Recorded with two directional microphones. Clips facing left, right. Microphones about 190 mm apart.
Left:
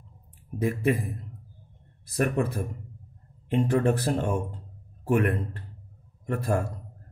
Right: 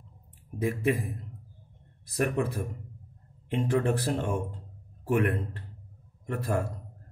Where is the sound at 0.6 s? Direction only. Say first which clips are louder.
Left 2 dB; 45° left (ahead or behind).